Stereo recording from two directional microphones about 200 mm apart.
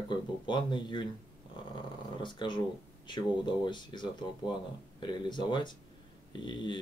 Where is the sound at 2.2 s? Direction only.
25° left (ahead or behind).